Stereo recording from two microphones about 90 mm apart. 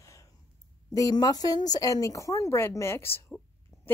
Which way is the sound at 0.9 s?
45° left (ahead or behind).